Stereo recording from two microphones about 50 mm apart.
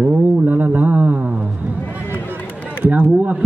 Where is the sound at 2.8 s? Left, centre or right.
Right.